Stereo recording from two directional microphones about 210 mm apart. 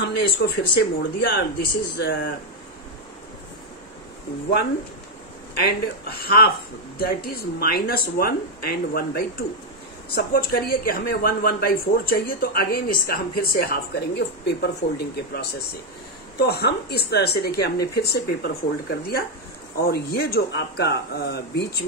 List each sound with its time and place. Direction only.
0.0 s speech: 50° left (ahead or behind)
5.6 s speech: 50° left (ahead or behind)